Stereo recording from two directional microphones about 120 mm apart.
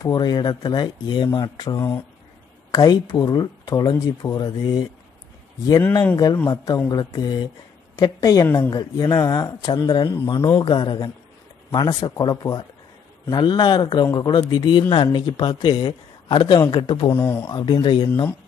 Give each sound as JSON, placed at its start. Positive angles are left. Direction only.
{"t": 0.0, "sound": "speech", "side_deg": 35}
{"t": 6.3, "sound": "a woman's voice", "side_deg": 25}
{"t": 17.1, "sound": "speech", "side_deg": 20}
{"t": 17.5, "sound": "speech", "side_deg": 40}